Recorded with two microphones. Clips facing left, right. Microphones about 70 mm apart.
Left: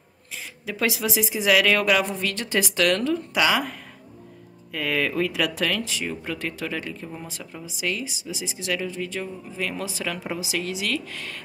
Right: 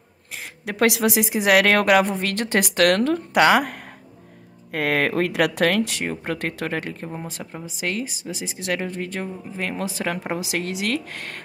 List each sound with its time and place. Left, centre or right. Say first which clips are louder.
0.3 s a woman's voice: right 2 dB; right